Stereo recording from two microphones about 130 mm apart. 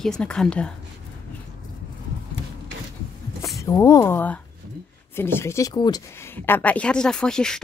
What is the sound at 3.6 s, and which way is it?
Speech, 25° left (ahead or behind).